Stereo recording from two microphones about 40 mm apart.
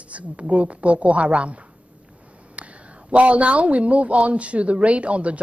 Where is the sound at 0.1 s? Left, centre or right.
Right.